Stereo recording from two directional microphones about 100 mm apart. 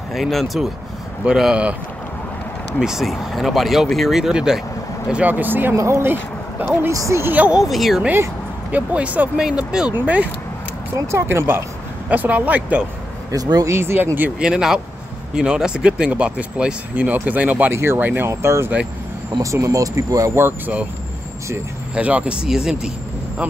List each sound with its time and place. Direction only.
0.1 s speech: centre (ahead or behind)
2.8 s speech: 5° right (ahead or behind); by 6.1 s 25° right (ahead or behind)
6.6 s speech: 15° right (ahead or behind)
6.9 s speech: 30° right (ahead or behind); by 7.6 s 15° right (ahead or behind)
7.6 s speech: centre (ahead or behind)
8.7 s speech: 15° right (ahead or behind)
11.0 s speech: 25° right (ahead or behind)
13.3 s speech: 40° right (ahead or behind)
13.7 s speech: 25° right (ahead or behind)
14.4 s speech: 5° right (ahead or behind); by 20.7 s 25° right (ahead or behind)
21.9 s speech: 10° right (ahead or behind)